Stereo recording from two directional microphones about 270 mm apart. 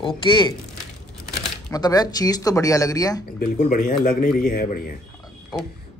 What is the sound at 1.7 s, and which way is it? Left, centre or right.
A man's voice, centre.